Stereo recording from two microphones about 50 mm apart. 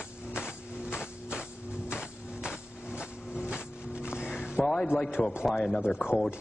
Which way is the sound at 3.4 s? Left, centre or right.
Centre.